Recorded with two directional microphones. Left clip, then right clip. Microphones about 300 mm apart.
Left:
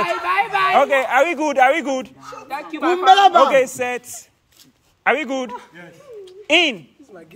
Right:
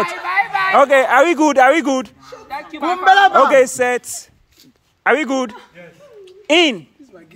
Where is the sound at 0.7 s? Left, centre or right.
Centre.